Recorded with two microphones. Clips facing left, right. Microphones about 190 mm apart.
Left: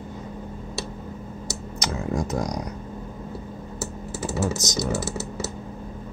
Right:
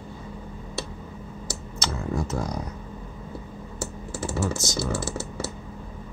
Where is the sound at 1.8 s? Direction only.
15° left (ahead or behind).